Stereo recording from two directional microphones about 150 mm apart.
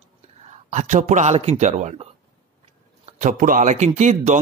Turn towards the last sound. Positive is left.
turn(degrees=-50)  # may be behind; listen again after turning